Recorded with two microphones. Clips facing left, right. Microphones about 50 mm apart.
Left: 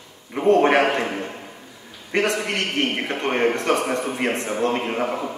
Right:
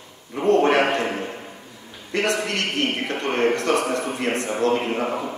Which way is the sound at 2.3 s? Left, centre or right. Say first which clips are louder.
Left 1 dB; left.